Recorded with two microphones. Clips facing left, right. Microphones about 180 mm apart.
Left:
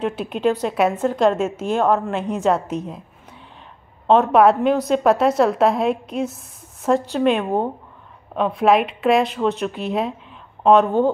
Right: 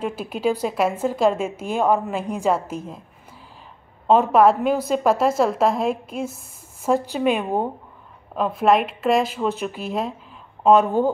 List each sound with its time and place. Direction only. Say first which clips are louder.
0.0 s a woman's voice: left 3 dB; 5° right (ahead or behind)
4.1 s a woman's voice: left 1 dB; centre (ahead or behind)
6.3 s a sound: left 1 dB; centre (ahead or behind)
7.1 s a woman's voice: left 3 dB; 5° right (ahead or behind)